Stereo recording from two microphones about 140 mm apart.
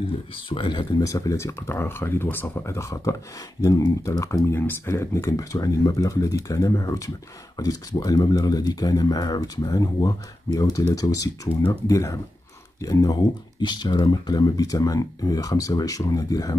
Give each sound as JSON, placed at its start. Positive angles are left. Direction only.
{"t": 0.5, "sound": "speech", "side_deg": 35}